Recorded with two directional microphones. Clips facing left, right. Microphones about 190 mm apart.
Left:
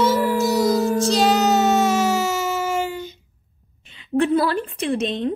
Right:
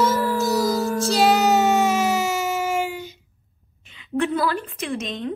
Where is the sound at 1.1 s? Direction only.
10° right (ahead or behind).